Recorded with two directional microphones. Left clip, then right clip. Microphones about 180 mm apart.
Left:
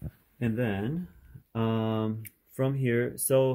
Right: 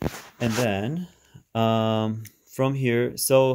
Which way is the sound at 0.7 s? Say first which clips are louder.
Right 6 dB; 50° right (ahead or behind).